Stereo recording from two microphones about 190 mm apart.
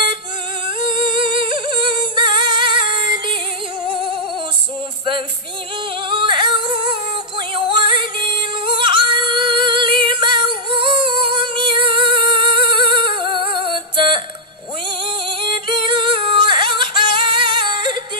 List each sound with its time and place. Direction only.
0.7 s music: 25° right (ahead or behind)
6.0 s singing: 25° right (ahead or behind)
7.3 s music: 25° right (ahead or behind)
15.7 s singing: 25° right (ahead or behind)